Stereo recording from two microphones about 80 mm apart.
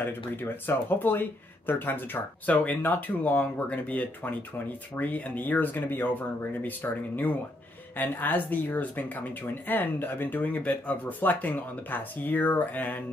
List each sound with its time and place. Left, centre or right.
0.4 s speech: left